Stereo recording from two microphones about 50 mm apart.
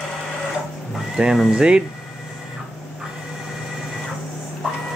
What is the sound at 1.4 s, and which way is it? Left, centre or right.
Speech, centre.